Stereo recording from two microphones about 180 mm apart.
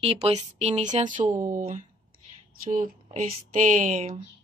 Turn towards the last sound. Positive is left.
turn(degrees=-45)  # may be behind; listen again after turning